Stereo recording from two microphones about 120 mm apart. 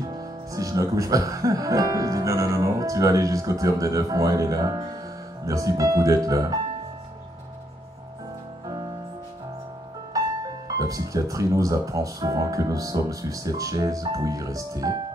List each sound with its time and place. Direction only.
0.0 s speech: 30° right (ahead or behind)
8.6 s music: 35° right (ahead or behind)
10.1 s speech: 30° right (ahead or behind)